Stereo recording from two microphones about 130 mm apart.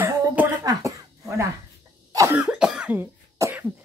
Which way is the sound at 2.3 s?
5° right (ahead or behind).